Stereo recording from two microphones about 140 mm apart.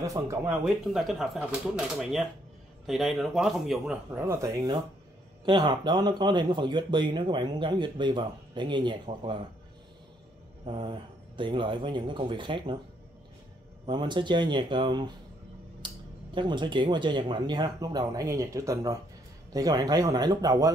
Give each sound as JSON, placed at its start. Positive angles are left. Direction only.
{"t": 0.0, "sound": "speech", "side_deg": -25}
{"t": 0.5, "sound": "speech", "side_deg": 0}
{"t": 4.1, "sound": "speech", "side_deg": -20}
{"t": 5.4, "sound": "speech", "side_deg": -35}
{"t": 10.6, "sound": "speech", "side_deg": -35}
{"t": 13.8, "sound": "speech", "side_deg": -35}
{"t": 16.3, "sound": "speech", "side_deg": -35}